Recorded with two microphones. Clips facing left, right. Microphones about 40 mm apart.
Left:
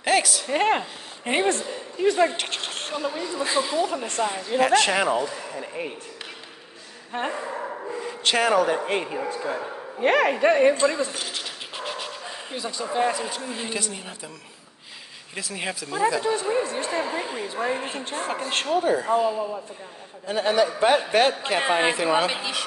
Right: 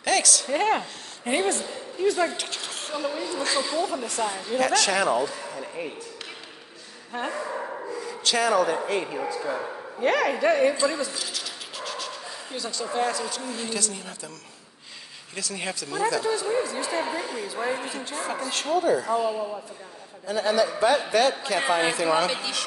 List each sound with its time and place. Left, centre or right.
0.0 s speech: left
0.5 s a woman's voice: left
3.0 s speech: centre
3.9 s speech: left
7.1 s a man's voice: left
9.0 s speech: centre
9.9 s a sound: left
12.8 s speech: left
15.3 s speech: centre
17.8 s speech: left
19.2 s speech: centre
20.2 s speech: left